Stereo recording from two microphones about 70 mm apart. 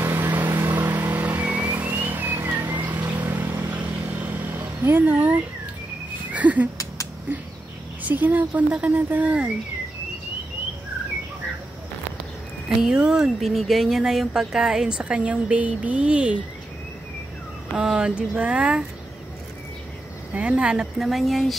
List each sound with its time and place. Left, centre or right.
0.2 s vehicle: right
6.3 s a sound: right
8.1 s speech: right
12.6 s speech: centre
17.7 s speech: centre
20.3 s speech: centre
21.0 s speech: centre